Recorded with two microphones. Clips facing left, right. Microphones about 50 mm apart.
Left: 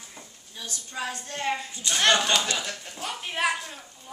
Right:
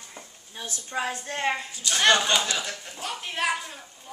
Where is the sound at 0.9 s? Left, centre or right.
Right.